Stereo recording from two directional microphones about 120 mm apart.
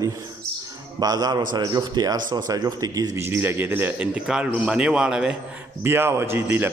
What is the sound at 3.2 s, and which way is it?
A man's voice, 20° right (ahead or behind).